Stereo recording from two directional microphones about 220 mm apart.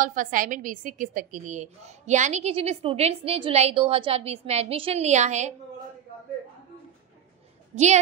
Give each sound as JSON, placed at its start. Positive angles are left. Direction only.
{"t": 0.0, "sound": "a woman's voice", "side_deg": -35}
{"t": 7.7, "sound": "a woman's voice", "side_deg": -30}